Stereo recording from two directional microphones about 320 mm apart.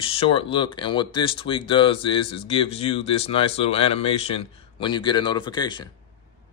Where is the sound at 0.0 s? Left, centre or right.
Centre.